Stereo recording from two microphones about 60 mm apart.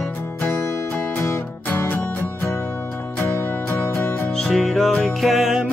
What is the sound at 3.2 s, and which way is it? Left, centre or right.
Music, left.